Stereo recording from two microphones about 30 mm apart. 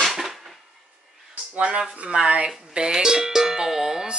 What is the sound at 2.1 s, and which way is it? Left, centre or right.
Speech, right.